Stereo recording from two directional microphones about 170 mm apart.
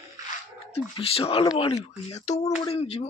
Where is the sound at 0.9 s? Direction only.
35° left (ahead or behind).